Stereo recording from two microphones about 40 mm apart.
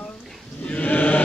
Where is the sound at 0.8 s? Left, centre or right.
Left.